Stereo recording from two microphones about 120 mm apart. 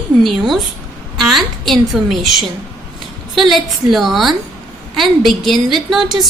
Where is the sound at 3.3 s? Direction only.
Centre (ahead or behind).